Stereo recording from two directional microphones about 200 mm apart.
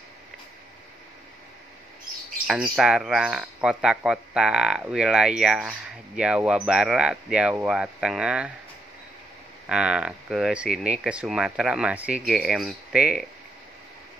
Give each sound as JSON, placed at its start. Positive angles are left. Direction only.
{"t": 2.4, "sound": "speech", "side_deg": -5}
{"t": 9.7, "sound": "speech", "side_deg": -5}